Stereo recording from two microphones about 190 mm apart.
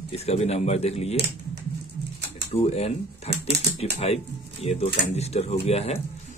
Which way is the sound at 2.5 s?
35° left (ahead or behind).